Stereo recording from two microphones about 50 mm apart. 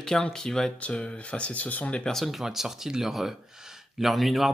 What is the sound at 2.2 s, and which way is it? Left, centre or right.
Speech, centre.